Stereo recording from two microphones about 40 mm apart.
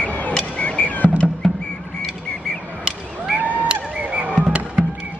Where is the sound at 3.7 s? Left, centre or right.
Right.